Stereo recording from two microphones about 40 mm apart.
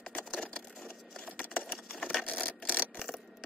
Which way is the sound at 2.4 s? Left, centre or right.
Left.